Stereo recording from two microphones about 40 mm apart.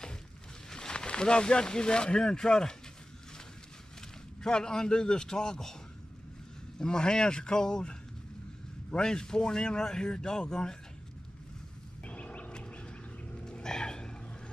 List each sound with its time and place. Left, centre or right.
0.7 s speech: centre
4.4 s speech: centre
6.8 s a man's voice: centre
12.0 s a sound: left
12.5 s bird: left